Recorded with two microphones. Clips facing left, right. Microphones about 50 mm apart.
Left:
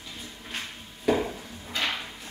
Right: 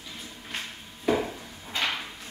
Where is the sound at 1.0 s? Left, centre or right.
Centre.